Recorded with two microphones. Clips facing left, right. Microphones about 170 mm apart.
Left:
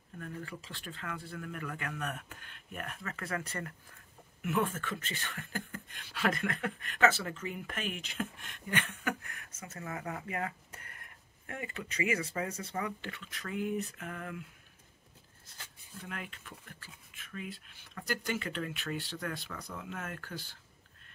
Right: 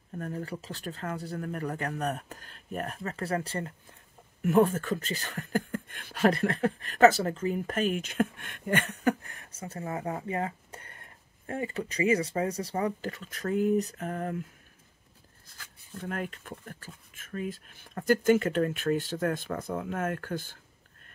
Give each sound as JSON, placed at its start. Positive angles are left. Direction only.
{"t": 0.2, "sound": "speech", "side_deg": -40}
{"t": 16.0, "sound": "speech", "side_deg": -45}